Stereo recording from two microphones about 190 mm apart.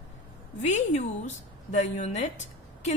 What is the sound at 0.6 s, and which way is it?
A woman's voice, 40° left (ahead or behind).